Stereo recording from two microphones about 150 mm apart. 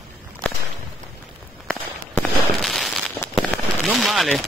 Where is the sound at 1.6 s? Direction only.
5° left (ahead or behind).